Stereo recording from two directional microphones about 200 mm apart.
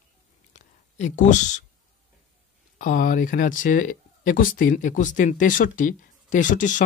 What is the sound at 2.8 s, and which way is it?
Speech, 40° left (ahead or behind).